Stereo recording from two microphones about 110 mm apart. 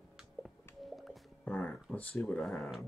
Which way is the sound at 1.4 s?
10° left (ahead or behind).